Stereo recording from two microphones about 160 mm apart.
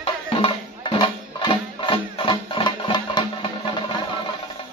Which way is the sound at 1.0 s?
30° left (ahead or behind).